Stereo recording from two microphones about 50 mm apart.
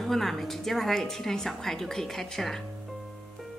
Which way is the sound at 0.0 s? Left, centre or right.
Centre.